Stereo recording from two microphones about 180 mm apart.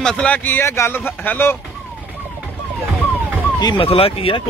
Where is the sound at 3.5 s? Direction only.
25° left (ahead or behind).